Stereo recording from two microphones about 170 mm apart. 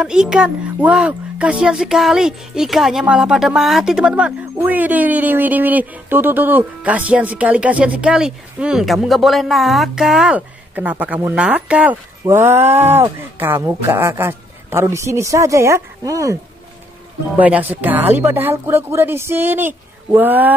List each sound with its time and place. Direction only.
0.0 s speech: 5° right (ahead or behind)
17.4 s speech: 10° right (ahead or behind)